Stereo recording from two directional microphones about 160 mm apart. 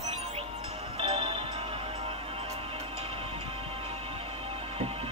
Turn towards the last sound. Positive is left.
turn(degrees=-35)  # may be behind; listen again after turning